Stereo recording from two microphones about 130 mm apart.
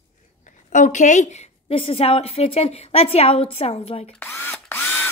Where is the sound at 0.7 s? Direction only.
75° left (ahead or behind); by 4.1 s 50° left (ahead or behind).